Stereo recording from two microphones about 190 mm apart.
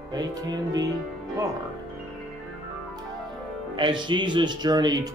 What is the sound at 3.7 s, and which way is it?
Speech, 25° right (ahead or behind).